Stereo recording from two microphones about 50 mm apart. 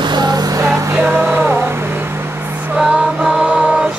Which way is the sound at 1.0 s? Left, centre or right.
Right.